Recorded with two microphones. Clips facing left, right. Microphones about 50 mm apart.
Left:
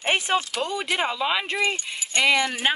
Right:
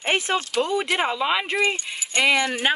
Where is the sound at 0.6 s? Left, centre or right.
Centre.